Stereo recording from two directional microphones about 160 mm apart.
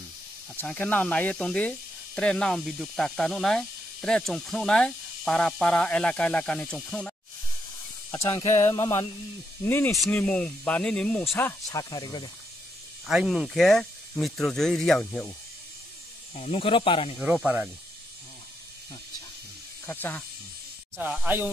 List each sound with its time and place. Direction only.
0.6 s speech: 10° left (ahead or behind)
8.3 s speech: 35° left (ahead or behind)
8.5 s a sound: 20° left (ahead or behind)
9.7 s speech: 15° left (ahead or behind)
13.0 s speech: centre (ahead or behind)
15.0 s speech: 15° left (ahead or behind)
16.3 s speech: 40° left (ahead or behind)
17.2 s speech: 5° right (ahead or behind)
19.9 s speech: 10° left (ahead or behind)
21.0 s speech: 10° right (ahead or behind)